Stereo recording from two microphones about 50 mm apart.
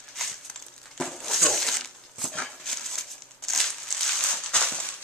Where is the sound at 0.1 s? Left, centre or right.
Centre.